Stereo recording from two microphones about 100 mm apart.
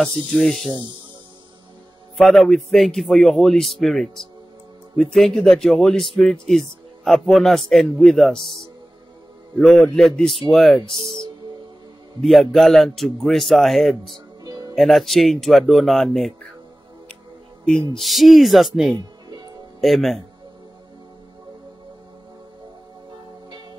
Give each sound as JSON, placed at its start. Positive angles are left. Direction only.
{"t": 0.0, "sound": "a man's voice", "side_deg": 5}
{"t": 2.1, "sound": "a man's voice", "side_deg": 0}
{"t": 10.9, "sound": "speech", "side_deg": 50}
{"t": 12.2, "sound": "a man's voice", "side_deg": 0}
{"t": 14.4, "sound": "music", "side_deg": -40}
{"t": 14.8, "sound": "a man's voice", "side_deg": 0}
{"t": 17.6, "sound": "a man's voice", "side_deg": 5}
{"t": 19.2, "sound": "music", "side_deg": -45}
{"t": 19.8, "sound": "a man's voice", "side_deg": 0}